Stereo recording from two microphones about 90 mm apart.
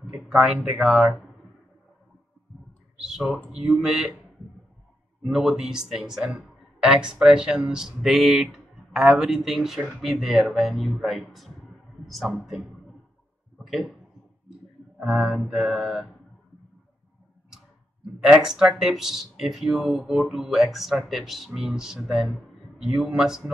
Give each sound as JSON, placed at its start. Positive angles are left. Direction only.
{"t": 0.1, "sound": "speech", "side_deg": -10}
{"t": 3.0, "sound": "speech", "side_deg": -5}
{"t": 5.2, "sound": "speech", "side_deg": -5}
{"t": 13.7, "sound": "speech", "side_deg": 0}
{"t": 15.0, "sound": "speech", "side_deg": -15}
{"t": 18.2, "sound": "speech", "side_deg": -10}